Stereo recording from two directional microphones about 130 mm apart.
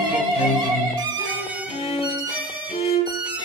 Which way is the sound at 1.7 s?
45° left (ahead or behind).